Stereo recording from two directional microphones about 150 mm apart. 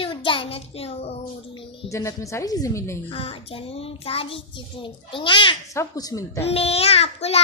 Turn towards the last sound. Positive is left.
turn(degrees=45)  # may be behind; listen again after turning